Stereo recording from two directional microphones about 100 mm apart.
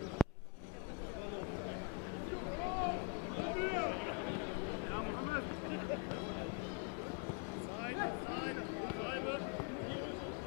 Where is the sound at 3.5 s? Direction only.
15° left (ahead or behind).